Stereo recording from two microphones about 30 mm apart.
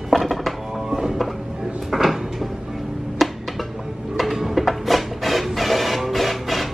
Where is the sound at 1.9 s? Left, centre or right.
Centre.